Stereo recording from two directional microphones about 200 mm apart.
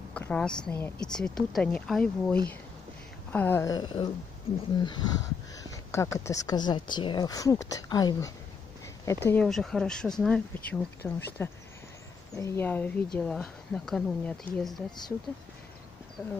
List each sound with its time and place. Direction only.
0.1 s speech: 5° left (ahead or behind)
14.9 s speech: 20° left (ahead or behind)